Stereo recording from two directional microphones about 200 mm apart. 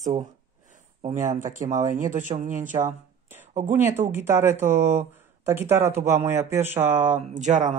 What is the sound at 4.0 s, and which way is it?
Speech, 40° right (ahead or behind).